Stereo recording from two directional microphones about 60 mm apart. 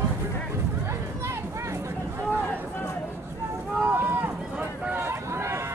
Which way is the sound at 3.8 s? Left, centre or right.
Right.